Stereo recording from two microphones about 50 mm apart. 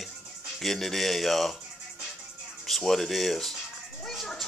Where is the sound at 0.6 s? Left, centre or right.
Centre.